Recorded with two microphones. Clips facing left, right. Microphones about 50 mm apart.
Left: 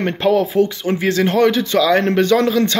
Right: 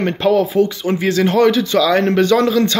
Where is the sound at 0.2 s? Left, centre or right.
Left.